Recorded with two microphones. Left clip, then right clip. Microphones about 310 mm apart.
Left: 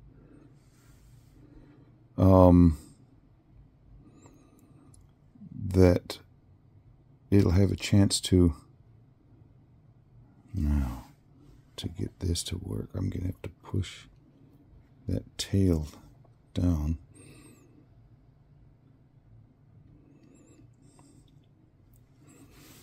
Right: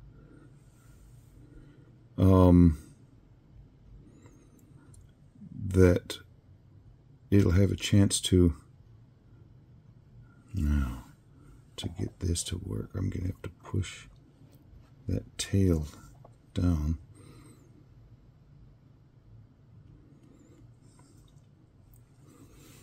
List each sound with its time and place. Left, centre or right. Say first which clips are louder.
2.1 s speech: left 3 dB; centre
5.7 s speech: left 1 dB; centre
7.2 s speech: left 1 dB; centre
10.5 s speech: left 1 dB; centre
16.5 s a sound: left 1 dB; centre